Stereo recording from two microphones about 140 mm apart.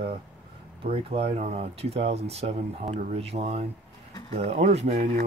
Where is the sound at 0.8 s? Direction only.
45° right (ahead or behind).